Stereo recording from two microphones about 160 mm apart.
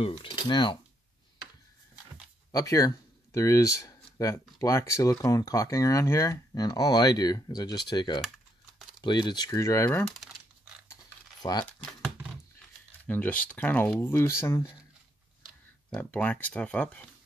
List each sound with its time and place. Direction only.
0.0 s speech: 35° left (ahead or behind)
2.5 s speech: 20° left (ahead or behind); by 10.3 s 5° left (ahead or behind)
11.4 s speech: 25° left (ahead or behind)
13.0 s speech: 10° left (ahead or behind)
15.9 s speech: 10° left (ahead or behind)